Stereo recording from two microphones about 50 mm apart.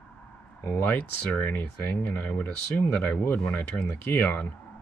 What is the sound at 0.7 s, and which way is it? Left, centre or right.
Speech, left.